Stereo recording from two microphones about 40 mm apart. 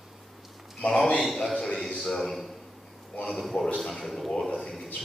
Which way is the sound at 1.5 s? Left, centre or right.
Centre.